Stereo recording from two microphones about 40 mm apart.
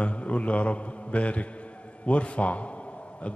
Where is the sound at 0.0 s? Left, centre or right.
Left.